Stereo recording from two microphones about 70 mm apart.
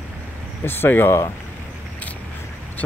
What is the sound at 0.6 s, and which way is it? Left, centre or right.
Speech, left.